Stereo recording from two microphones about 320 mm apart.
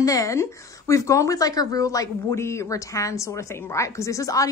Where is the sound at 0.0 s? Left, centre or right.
Centre.